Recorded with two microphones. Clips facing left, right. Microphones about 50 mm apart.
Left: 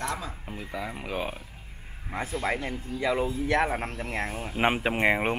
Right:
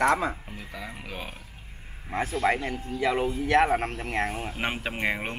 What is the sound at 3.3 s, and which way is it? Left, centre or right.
Speech, right.